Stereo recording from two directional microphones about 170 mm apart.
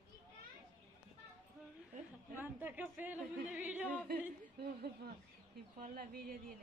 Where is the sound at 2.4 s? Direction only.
10° right (ahead or behind).